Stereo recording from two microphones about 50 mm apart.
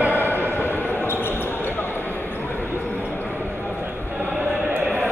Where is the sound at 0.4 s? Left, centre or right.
Left.